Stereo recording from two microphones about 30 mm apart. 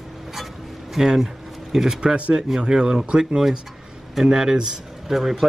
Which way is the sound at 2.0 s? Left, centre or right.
Right.